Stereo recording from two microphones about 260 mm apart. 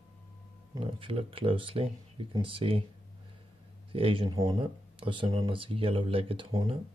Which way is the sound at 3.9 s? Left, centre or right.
Right.